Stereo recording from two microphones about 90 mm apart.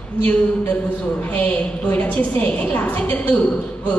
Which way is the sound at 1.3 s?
20° left (ahead or behind).